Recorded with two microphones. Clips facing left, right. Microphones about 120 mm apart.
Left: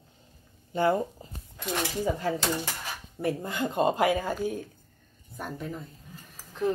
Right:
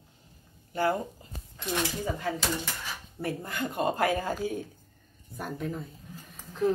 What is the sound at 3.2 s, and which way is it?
Speech, 25° left (ahead or behind).